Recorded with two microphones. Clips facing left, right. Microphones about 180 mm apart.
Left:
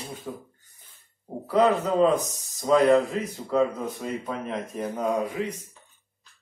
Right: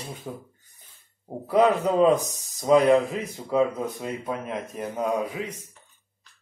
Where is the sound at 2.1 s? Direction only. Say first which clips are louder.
Right 1 dB; 10° right (ahead or behind).